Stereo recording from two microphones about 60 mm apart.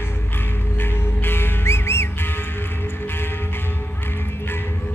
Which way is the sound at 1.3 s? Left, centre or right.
Left.